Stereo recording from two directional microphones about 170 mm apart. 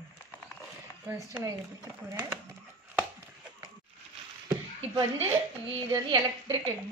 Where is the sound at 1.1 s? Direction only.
15° right (ahead or behind).